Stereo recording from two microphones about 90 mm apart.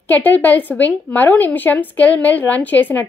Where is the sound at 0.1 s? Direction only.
20° left (ahead or behind).